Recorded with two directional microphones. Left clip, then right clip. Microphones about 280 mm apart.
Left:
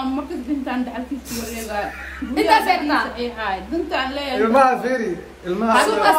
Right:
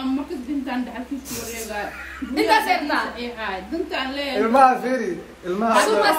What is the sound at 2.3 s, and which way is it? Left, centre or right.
A woman's voice, centre.